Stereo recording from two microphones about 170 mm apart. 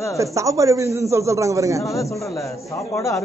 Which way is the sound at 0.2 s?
20° right (ahead or behind).